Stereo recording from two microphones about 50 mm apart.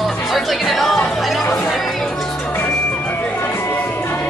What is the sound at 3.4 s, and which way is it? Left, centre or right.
Music, left.